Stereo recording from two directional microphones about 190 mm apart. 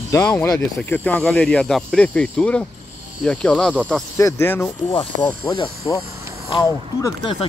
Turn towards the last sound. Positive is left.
turn(degrees=20)  # may be behind; listen again after turning